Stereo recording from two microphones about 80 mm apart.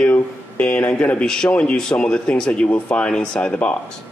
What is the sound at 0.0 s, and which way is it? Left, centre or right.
Speech, centre.